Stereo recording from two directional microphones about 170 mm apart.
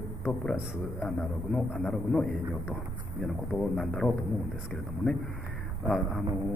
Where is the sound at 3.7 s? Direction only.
Centre (ahead or behind).